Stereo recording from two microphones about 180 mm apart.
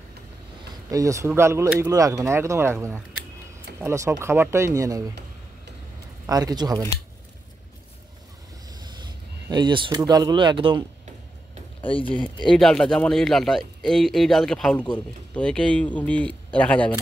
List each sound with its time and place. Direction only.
0.8 s speech: 20° right (ahead or behind)
6.2 s speech: 20° right (ahead or behind)
9.5 s speech: 25° right (ahead or behind)
12.4 s speech: centre (ahead or behind)